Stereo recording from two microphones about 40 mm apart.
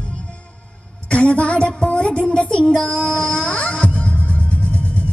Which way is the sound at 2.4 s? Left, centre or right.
Left.